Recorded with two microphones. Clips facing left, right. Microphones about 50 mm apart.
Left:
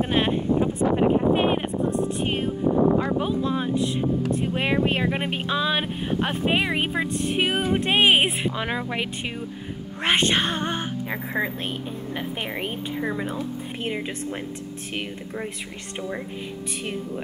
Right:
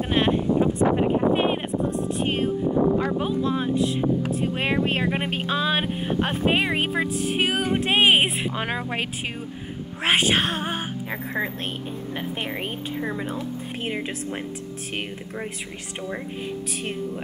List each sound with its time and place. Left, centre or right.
0.0 s a sound: centre
3.2 s speech: centre
8.5 s speech: centre
11.1 s speech: centre